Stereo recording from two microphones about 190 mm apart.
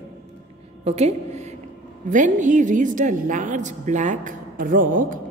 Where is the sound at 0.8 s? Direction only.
35° right (ahead or behind).